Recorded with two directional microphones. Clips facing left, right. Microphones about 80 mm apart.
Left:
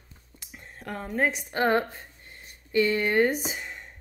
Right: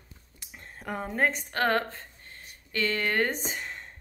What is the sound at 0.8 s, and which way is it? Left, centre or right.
Speech, centre.